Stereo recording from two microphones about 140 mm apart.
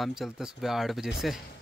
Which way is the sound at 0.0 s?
5° right (ahead or behind).